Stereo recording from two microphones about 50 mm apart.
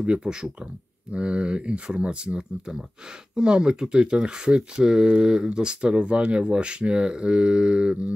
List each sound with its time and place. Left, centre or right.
0.0 s speech: right